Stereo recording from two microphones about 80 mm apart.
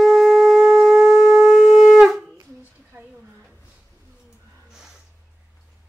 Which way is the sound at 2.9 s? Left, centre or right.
Right.